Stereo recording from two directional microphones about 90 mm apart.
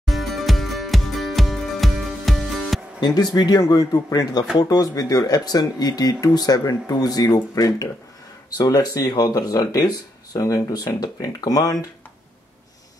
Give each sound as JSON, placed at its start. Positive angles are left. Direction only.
{"t": 0.0, "sound": "music", "side_deg": 0}
{"t": 3.0, "sound": "speech", "side_deg": 50}